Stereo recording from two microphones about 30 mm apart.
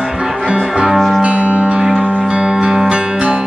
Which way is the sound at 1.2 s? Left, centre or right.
Right.